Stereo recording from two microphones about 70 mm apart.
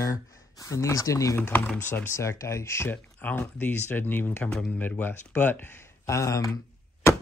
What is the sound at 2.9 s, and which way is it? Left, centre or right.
Speech, left.